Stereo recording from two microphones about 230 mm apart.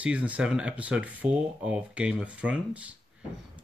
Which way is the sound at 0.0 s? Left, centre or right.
Centre.